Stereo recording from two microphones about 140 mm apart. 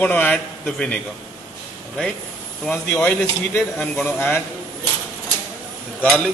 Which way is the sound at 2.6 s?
5° left (ahead or behind).